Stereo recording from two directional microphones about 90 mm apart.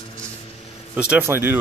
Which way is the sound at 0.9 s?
15° right (ahead or behind).